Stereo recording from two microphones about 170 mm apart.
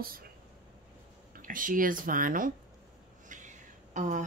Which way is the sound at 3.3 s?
45° right (ahead or behind).